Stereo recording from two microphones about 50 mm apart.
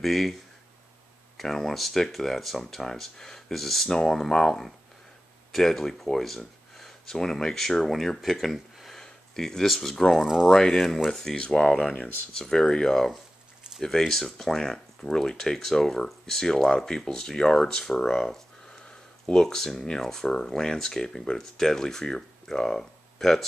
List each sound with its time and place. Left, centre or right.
0.0 s speech: centre
9.0 s speech: centre